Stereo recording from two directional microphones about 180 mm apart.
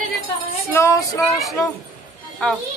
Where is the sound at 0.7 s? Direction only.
15° left (ahead or behind).